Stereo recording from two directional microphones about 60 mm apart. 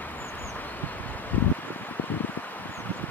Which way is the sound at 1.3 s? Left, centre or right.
Left.